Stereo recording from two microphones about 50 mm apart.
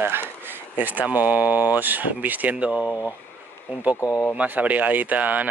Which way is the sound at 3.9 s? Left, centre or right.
Left.